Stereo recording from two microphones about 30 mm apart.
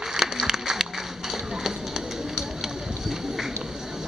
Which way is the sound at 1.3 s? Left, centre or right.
Centre.